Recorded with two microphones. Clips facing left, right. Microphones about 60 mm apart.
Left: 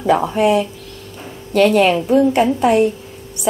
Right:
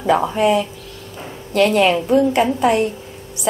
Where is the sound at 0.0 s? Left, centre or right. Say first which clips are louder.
Left 1 dB; centre.